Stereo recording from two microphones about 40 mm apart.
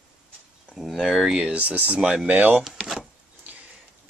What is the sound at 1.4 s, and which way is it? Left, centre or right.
Speech, right.